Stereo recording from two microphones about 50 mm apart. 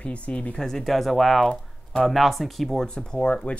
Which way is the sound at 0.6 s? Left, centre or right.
Centre.